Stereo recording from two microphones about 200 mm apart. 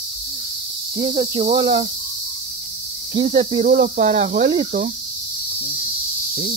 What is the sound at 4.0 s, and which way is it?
Speech, 45° right (ahead or behind).